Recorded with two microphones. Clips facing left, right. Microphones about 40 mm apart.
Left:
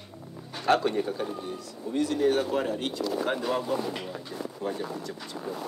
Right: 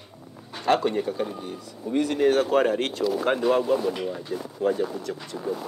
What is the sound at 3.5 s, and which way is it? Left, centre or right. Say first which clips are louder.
Speech: right 6 dB; right.